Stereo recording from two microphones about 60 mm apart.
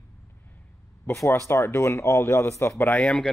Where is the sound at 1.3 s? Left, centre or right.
Left.